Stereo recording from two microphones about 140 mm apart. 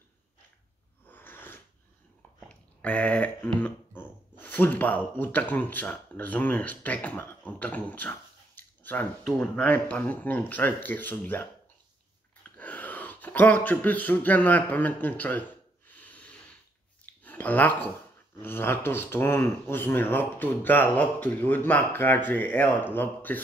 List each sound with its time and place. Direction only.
1.0 s a sound: 15° left (ahead or behind)
3.5 s speech: 15° left (ahead or behind)
12.5 s speech: 10° left (ahead or behind)
16.0 s snort: 10° left (ahead or behind)
17.0 s a sound: 10° left (ahead or behind)
18.4 s speech: 15° left (ahead or behind)